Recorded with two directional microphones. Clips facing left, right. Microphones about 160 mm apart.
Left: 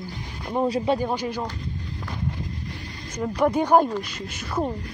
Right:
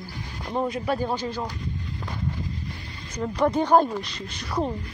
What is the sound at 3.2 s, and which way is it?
Speech, 10° left (ahead or behind).